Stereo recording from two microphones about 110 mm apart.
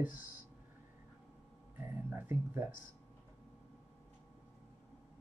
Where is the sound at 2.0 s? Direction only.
20° right (ahead or behind).